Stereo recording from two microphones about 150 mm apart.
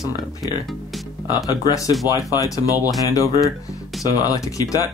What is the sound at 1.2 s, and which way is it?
Speech, 25° left (ahead or behind).